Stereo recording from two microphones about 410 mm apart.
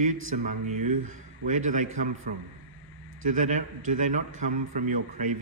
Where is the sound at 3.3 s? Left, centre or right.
Centre.